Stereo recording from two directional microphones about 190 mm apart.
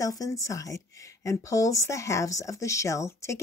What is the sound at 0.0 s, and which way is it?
Speech, 15° left (ahead or behind).